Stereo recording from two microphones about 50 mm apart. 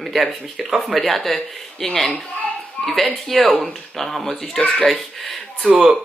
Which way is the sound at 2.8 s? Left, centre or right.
Left.